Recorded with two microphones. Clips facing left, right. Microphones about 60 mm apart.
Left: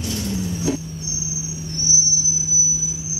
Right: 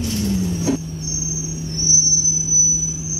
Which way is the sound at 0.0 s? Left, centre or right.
Right.